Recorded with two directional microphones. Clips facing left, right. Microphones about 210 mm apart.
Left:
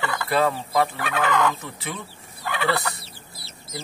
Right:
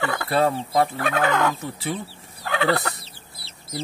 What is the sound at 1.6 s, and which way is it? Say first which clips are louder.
Speech: right 5 dB; 35° right (ahead or behind).